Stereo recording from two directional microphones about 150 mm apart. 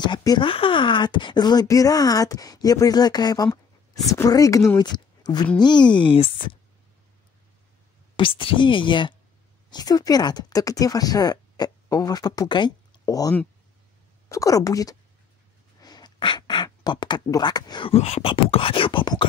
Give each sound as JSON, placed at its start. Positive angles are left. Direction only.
{"t": 0.0, "sound": "speech", "side_deg": 30}
{"t": 8.2, "sound": "speech", "side_deg": 35}
{"t": 14.3, "sound": "speech", "side_deg": 20}
{"t": 17.9, "sound": "speech", "side_deg": 45}